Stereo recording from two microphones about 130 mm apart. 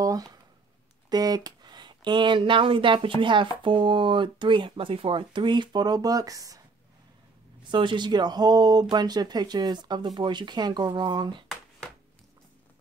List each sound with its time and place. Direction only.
0.0 s a sound: 30° right (ahead or behind)
1.1 s speech: 30° right (ahead or behind)
7.7 s speech: 40° right (ahead or behind)